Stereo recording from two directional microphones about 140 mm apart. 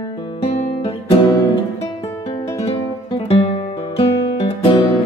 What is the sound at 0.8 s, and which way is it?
Music, 40° left (ahead or behind).